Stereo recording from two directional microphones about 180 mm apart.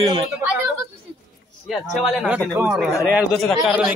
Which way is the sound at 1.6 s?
Centre (ahead or behind).